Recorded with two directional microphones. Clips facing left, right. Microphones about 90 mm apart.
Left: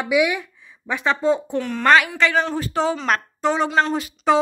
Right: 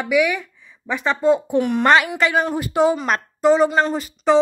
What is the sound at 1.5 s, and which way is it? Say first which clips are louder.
A woman's voice: right 1 dB; 20° right (ahead or behind).